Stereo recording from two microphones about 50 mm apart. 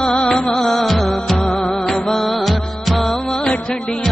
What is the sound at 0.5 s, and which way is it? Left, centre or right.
Music of bollywood, centre.